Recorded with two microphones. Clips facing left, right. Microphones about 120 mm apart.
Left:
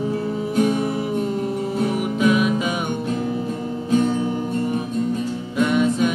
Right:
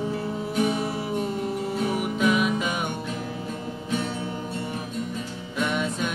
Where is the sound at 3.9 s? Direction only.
40° left (ahead or behind).